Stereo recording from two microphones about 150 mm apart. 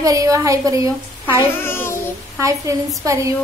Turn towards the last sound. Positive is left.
turn(degrees=-20)  # may be behind; listen again after turning